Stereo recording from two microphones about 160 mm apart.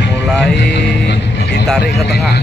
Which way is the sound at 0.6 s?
90° left.